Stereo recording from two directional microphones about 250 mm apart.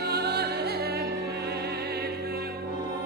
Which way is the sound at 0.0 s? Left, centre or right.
Right.